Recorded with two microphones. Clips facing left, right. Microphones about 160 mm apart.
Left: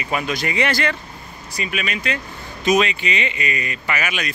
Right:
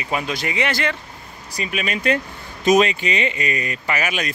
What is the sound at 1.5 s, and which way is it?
Speech, 35° right (ahead or behind).